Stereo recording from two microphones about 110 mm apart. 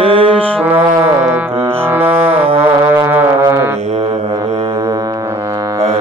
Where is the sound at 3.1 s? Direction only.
20° right (ahead or behind).